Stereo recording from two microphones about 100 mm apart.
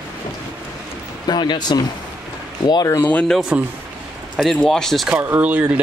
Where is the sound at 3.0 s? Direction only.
15° left (ahead or behind).